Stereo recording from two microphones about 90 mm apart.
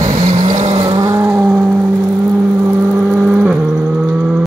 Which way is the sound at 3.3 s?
20° right (ahead or behind).